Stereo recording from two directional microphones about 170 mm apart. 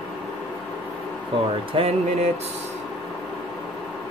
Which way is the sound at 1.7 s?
35° right (ahead or behind).